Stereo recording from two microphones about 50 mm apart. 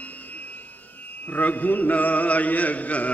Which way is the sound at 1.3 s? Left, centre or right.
Left.